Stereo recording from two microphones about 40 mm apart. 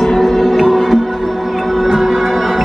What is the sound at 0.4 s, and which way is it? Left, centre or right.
Music, centre.